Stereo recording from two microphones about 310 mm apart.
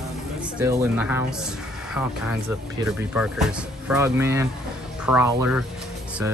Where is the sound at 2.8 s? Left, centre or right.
Centre.